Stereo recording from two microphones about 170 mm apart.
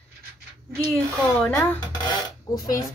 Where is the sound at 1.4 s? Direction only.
10° left (ahead or behind).